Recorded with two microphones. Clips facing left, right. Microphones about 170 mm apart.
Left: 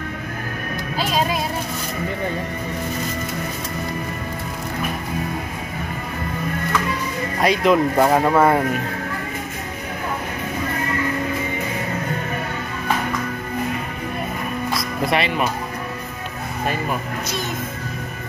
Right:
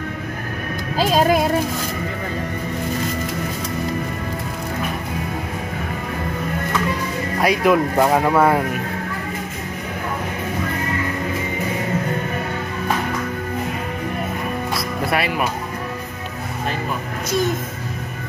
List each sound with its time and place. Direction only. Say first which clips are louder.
0.9 s music: right 6 dB; 50° right (ahead or behind)
7.4 s speech: even; 5° right (ahead or behind)
8.0 s speech: even; 5° left (ahead or behind)
15.0 s speech: left 1 dB; 5° right (ahead or behind)